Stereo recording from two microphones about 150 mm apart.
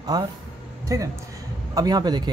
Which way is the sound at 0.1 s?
25° right (ahead or behind).